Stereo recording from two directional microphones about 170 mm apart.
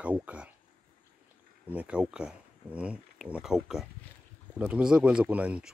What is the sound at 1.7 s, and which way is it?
Speech, 5° right (ahead or behind).